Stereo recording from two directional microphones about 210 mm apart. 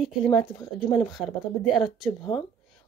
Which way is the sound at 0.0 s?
Centre (ahead or behind).